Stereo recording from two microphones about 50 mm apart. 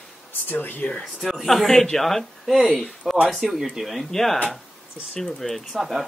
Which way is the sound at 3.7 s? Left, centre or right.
Centre.